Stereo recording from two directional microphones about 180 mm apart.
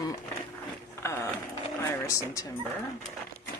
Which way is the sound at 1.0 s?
15° left (ahead or behind).